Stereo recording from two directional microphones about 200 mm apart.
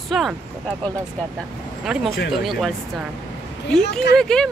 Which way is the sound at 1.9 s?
Centre (ahead or behind).